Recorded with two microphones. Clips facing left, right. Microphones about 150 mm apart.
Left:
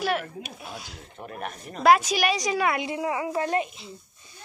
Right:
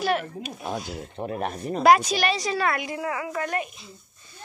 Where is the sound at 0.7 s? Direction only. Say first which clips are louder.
Right 9 dB; 45° right (ahead or behind).